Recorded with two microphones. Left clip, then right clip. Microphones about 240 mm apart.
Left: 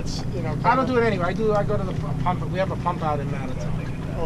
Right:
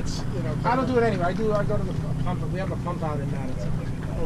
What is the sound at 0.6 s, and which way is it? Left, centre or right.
Speech, centre.